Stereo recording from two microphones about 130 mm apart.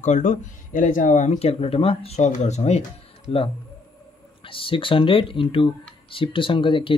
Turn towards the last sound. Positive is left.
turn(degrees=40)  # may be behind; listen again after turning